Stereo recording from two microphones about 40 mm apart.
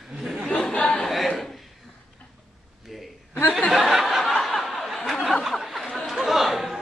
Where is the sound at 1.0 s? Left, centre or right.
Centre.